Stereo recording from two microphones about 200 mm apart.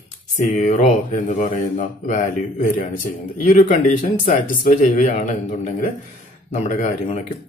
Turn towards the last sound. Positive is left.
turn(degrees=35)  # may be behind; listen again after turning